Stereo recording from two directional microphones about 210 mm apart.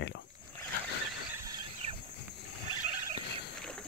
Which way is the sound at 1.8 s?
30° right (ahead or behind).